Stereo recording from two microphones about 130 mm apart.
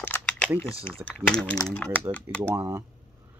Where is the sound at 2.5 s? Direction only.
20° right (ahead or behind).